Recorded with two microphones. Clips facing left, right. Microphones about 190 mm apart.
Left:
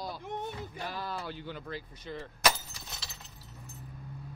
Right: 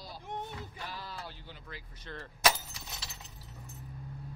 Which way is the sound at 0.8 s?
55° left (ahead or behind).